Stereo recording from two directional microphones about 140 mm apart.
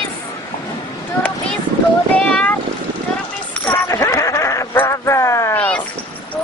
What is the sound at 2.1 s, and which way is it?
Boat, 10° left (ahead or behind).